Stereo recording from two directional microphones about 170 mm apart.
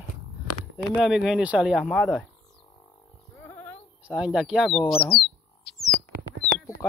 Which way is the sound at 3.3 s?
10° left (ahead or behind).